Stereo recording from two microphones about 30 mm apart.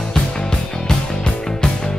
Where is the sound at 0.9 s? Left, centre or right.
Centre.